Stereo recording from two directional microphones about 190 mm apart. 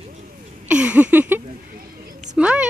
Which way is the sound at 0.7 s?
5° right (ahead or behind).